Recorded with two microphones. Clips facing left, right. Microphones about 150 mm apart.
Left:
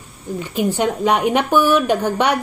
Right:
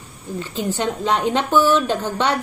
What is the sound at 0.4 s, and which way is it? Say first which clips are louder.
A woman's voice: left 4 dB; 15° left (ahead or behind).